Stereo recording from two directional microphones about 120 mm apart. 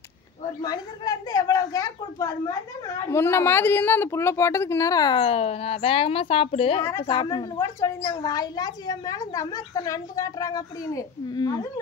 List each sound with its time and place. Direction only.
0.6 s a woman's voice: 35° left (ahead or behind)
5.2 s a woman's voice: 55° left (ahead or behind)
6.8 s a woman's voice: 25° left (ahead or behind)